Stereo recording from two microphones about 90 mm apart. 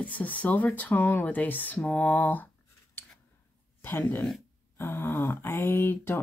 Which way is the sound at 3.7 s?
25° left (ahead or behind).